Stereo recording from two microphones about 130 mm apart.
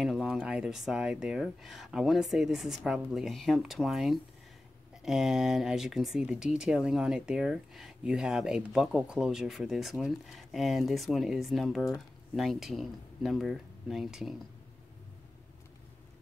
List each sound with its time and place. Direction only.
0.0 s speech: centre (ahead or behind)